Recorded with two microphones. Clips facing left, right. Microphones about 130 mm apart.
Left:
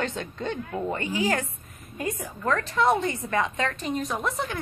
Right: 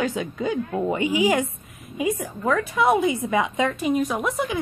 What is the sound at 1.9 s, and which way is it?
A woman's voice, centre (ahead or behind).